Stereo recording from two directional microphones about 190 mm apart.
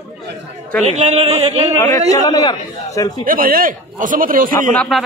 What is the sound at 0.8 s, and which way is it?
Speech, 35° right (ahead or behind).